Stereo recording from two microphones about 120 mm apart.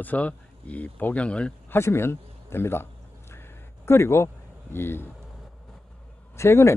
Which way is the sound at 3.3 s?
20° left (ahead or behind).